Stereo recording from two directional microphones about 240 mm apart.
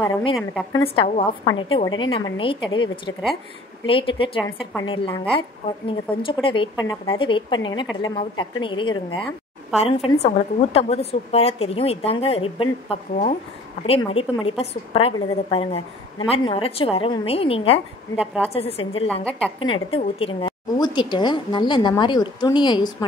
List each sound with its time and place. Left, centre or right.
0.0 s a woman's voice: left
6.4 s a woman's voice: left
18.2 s a woman's voice: centre
18.5 s a woman's voice: left